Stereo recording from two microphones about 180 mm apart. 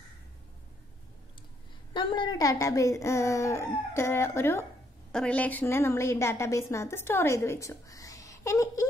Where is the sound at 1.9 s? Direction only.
25° left (ahead or behind).